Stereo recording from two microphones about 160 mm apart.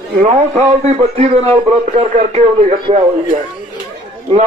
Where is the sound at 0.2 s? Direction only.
45° right (ahead or behind).